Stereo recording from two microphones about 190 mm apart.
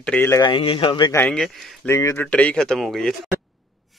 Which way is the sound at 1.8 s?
15° left (ahead or behind).